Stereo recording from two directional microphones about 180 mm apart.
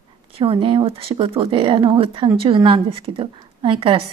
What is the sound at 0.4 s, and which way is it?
Speech, 30° right (ahead or behind).